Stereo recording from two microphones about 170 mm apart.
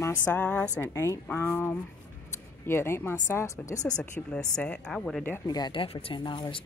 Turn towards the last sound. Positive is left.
turn(degrees=30)  # may be behind; listen again after turning